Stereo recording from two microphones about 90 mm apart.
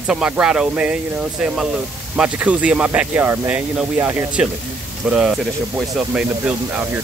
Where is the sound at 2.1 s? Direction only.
10° right (ahead or behind).